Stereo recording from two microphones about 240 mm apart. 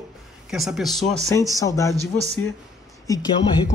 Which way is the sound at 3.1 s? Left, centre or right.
Centre.